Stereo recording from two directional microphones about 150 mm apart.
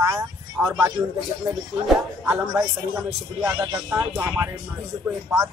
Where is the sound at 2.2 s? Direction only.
15° right (ahead or behind).